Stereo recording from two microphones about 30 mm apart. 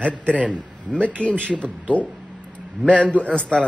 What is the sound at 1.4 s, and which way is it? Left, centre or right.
Speech, left.